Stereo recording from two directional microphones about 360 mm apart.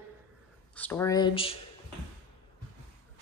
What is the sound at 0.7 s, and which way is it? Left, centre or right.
Speech, centre.